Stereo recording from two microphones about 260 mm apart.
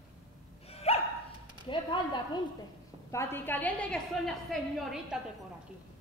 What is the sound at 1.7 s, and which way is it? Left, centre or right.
A woman's voice, centre.